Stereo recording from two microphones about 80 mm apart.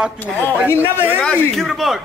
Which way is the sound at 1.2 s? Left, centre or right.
Centre.